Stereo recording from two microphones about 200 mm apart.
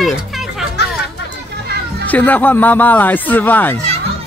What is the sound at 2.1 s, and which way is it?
Speech, 10° left (ahead or behind).